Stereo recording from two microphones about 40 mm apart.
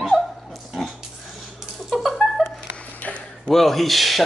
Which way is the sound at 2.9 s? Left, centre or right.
Left.